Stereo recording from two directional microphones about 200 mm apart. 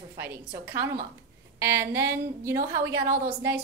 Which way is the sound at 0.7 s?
10° right (ahead or behind).